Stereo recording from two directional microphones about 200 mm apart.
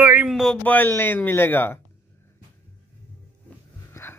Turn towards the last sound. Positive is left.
turn(degrees=10)  # may be behind; listen again after turning